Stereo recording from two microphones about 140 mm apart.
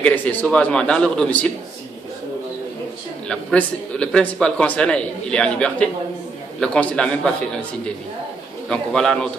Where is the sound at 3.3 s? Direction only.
5° left (ahead or behind).